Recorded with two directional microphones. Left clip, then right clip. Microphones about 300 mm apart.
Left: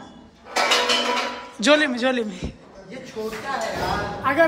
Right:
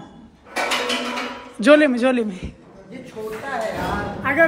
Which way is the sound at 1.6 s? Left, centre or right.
Centre.